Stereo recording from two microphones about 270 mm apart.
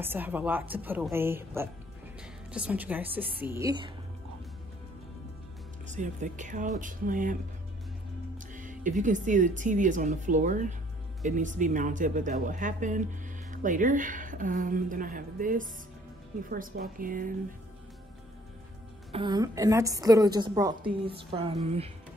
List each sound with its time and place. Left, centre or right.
0.0 s a woman's voice: centre
5.9 s a woman's voice: right
8.5 s a woman's voice: right
19.1 s a woman's voice: centre